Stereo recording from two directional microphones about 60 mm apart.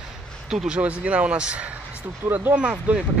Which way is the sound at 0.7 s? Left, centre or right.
Right.